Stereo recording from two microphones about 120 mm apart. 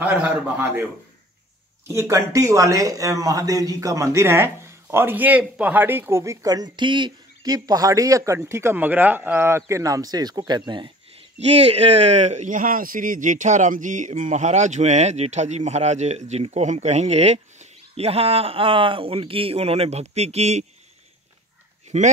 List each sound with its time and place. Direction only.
0.0 s a man's voice: 15° right (ahead or behind)
1.9 s a man's voice: 25° right (ahead or behind)
11.3 s speech: 65° right (ahead or behind)
21.9 s speech: 70° right (ahead or behind)